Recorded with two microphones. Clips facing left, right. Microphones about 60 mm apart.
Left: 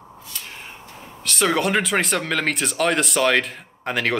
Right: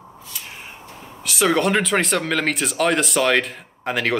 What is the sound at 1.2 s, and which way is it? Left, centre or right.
Speech, centre.